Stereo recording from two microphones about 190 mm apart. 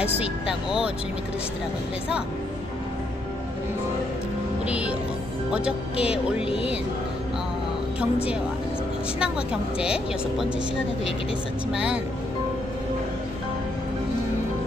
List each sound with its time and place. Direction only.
0.0 s speech: 5° right (ahead or behind)
4.6 s music: 5° right (ahead or behind)
6.5 s speech: 30° left (ahead or behind)
9.2 s speech: 5° right (ahead or behind)
11.7 s speech: 5° right (ahead or behind)